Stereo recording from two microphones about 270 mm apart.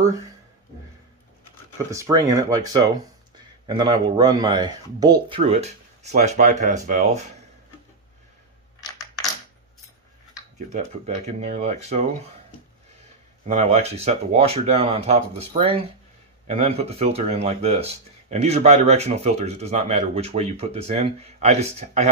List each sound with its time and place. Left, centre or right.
1.9 s speech: centre; by 7.2 s right
11.2 s speech: right
13.5 s speech: right